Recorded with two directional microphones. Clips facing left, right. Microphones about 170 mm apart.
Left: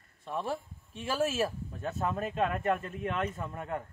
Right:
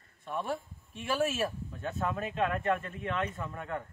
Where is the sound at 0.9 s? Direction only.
35° left (ahead or behind).